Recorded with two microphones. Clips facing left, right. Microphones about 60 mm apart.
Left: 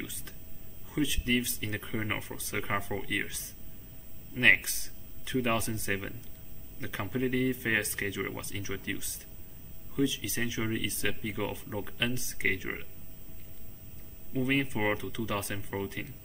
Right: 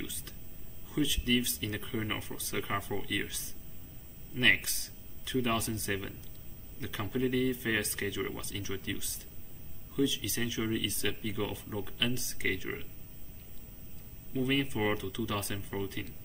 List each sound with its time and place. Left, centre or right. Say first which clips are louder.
0.8 s speech: left 1 dB; left
9.9 s speech: left 1 dB; left
14.3 s speech: left 1 dB; left